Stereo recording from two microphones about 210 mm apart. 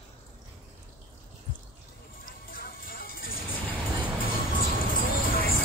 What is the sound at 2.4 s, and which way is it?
Music, 45° left (ahead or behind).